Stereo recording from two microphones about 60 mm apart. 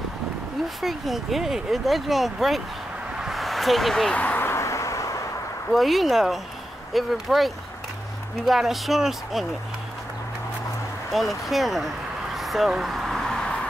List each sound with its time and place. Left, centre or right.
0.8 s speech: centre
3.2 s a sound: centre
4.1 s speech: left
4.4 s vehicle: left
5.7 s speech: centre
11.1 s speech: centre
12.4 s a sound: centre